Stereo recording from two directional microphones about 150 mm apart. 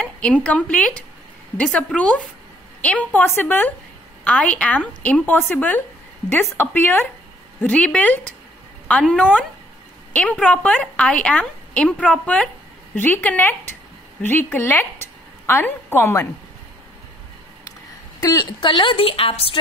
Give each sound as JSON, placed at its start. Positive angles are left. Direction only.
{"t": 0.4, "sound": "a woman's voice", "side_deg": 10}
{"t": 18.2, "sound": "speech", "side_deg": 25}